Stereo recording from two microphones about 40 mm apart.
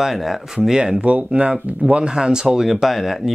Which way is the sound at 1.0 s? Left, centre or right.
Right.